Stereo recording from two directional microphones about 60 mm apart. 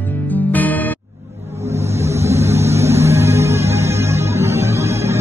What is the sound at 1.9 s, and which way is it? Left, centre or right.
Music, right.